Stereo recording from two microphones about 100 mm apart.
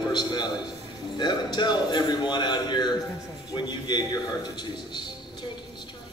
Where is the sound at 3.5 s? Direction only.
50° left (ahead or behind).